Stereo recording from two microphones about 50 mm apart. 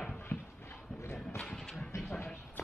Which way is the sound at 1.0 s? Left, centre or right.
Left.